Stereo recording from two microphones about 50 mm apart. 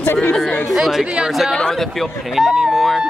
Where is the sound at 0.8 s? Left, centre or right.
Centre.